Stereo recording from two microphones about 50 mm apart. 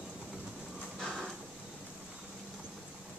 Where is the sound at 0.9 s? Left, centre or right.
Centre.